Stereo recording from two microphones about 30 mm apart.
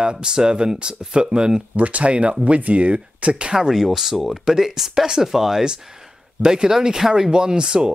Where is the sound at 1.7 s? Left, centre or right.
Right.